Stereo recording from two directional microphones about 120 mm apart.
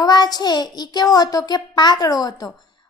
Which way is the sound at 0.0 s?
35° left (ahead or behind).